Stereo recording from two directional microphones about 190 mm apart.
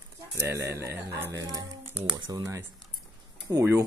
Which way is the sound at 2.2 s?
20° right (ahead or behind).